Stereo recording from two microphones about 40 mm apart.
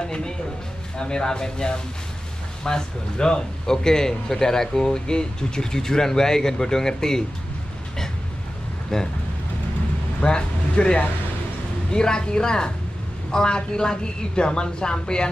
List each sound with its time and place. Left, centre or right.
0.0 s a woman's voice: left
8.9 s speech: centre
10.2 s a woman's voice: left